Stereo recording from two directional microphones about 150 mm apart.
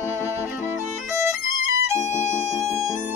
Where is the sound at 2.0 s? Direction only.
15° left (ahead or behind).